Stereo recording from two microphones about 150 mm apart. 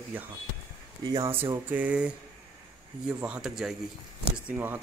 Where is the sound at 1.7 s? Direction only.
10° right (ahead or behind).